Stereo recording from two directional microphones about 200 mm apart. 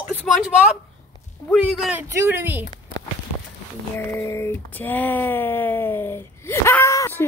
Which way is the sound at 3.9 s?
10° left (ahead or behind).